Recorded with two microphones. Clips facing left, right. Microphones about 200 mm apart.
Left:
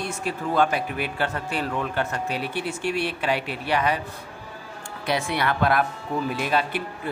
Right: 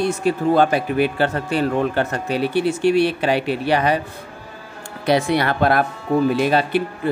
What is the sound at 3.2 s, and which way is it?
Speech, 30° right (ahead or behind).